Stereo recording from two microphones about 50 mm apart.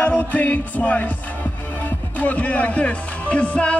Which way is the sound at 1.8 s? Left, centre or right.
Left.